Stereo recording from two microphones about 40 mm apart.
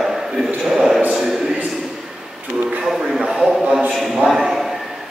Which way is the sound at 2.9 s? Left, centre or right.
Centre.